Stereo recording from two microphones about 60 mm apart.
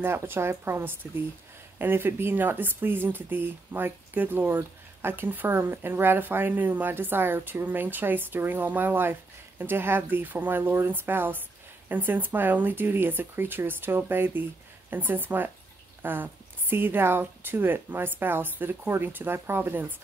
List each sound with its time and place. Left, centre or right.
0.0 s a woman's voice: right